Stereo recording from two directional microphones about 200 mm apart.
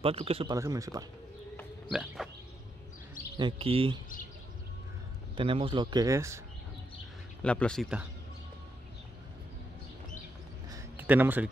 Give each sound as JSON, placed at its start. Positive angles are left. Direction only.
{"t": 0.0, "sound": "speech", "side_deg": -30}
{"t": 0.6, "sound": "speech", "side_deg": -15}
{"t": 1.9, "sound": "speech", "side_deg": -5}
{"t": 3.3, "sound": "speech", "side_deg": -25}
{"t": 5.3, "sound": "speech", "side_deg": -25}
{"t": 7.4, "sound": "speech", "side_deg": 5}
{"t": 10.7, "sound": "a sound", "side_deg": -10}